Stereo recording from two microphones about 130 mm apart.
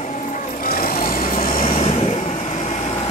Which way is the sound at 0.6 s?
90° left.